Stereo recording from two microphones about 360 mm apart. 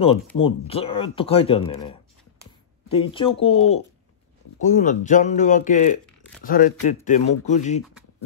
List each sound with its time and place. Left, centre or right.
0.4 s speech: centre
2.9 s speech: centre